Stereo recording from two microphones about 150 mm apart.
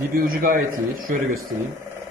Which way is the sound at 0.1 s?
70° right (ahead or behind).